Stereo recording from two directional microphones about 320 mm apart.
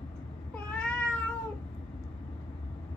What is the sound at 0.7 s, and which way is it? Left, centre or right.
Cat, centre.